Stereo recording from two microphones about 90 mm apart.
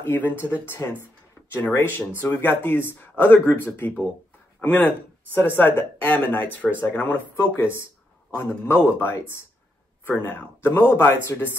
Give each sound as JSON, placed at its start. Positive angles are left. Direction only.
{"t": 0.0, "sound": "speech", "side_deg": 25}